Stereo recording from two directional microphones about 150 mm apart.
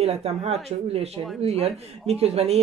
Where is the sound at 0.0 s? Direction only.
45° right (ahead or behind).